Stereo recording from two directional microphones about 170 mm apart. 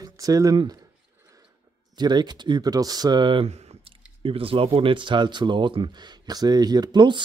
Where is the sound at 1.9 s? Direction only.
25° right (ahead or behind).